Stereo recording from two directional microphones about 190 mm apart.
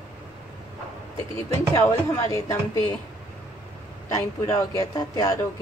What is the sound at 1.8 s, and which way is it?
A woman's voice, 15° left (ahead or behind).